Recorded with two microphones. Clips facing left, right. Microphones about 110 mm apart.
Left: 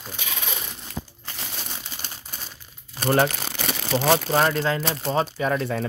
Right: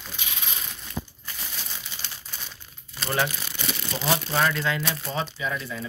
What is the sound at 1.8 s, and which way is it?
Crumpling, 40° left (ahead or behind).